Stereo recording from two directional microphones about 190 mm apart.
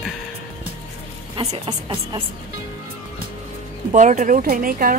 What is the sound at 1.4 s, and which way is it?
Speech, 35° right (ahead or behind).